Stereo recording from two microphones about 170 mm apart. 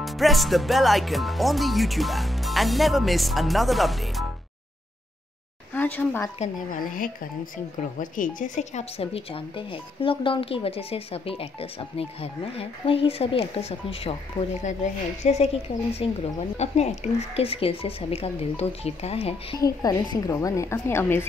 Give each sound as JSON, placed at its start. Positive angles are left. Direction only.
{"t": 0.0, "sound": "speech", "side_deg": 0}
{"t": 5.8, "sound": "speech", "side_deg": 10}
{"t": 6.7, "sound": "speech", "side_deg": 55}
{"t": 8.4, "sound": "speech", "side_deg": 45}
{"t": 19.6, "sound": "a woman's voice", "side_deg": 20}